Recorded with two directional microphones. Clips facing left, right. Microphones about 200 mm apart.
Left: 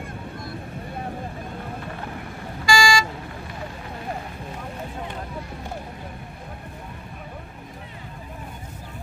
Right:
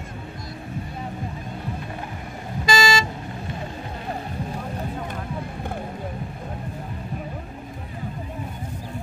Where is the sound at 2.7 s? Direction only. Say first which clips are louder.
Even; 25° right (ahead or behind).